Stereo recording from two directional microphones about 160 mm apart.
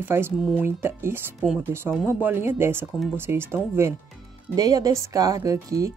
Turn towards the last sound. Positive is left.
turn(degrees=-20)  # may be behind; listen again after turning